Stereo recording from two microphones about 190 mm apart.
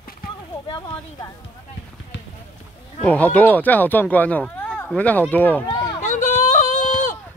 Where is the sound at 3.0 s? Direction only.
5° left (ahead or behind).